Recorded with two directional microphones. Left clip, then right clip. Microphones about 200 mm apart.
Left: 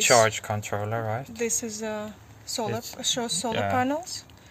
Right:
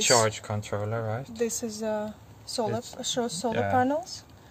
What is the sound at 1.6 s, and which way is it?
Speech, 30° right (ahead or behind).